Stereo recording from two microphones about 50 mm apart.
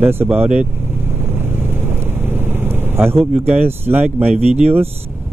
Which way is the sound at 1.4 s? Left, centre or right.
Right.